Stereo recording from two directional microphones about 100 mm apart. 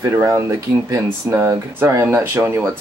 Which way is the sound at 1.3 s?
20° right (ahead or behind).